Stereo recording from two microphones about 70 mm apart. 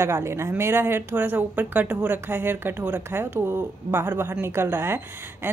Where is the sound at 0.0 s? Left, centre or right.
Right.